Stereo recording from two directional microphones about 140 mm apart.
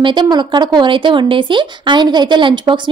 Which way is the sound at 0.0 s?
35° right (ahead or behind).